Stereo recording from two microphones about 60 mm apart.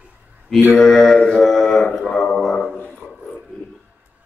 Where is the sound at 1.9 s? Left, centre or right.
Centre.